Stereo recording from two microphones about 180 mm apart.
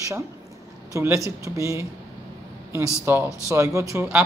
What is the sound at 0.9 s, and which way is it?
Speech, 15° right (ahead or behind).